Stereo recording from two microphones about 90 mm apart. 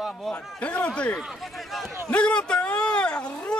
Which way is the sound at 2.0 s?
10° left (ahead or behind).